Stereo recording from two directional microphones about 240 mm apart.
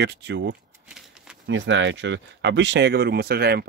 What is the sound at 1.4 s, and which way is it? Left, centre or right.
Speech, right.